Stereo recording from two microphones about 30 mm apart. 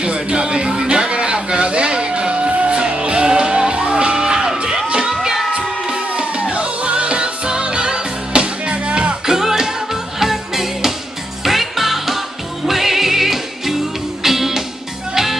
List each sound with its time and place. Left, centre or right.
0.0 s music: right
5.9 s music: right
9.2 s music: centre